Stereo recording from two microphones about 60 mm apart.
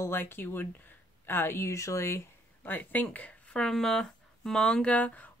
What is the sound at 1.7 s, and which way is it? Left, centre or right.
Speech, left.